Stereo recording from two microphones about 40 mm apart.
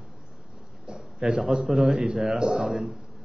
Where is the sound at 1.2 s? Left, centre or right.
Centre.